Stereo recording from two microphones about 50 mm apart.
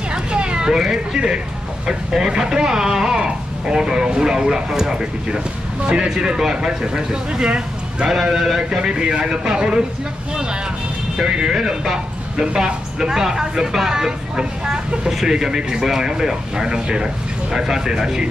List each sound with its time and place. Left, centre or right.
0.1 s a sound: centre
1.9 s speech: centre
8.2 s speech: centre
11.1 s speech: centre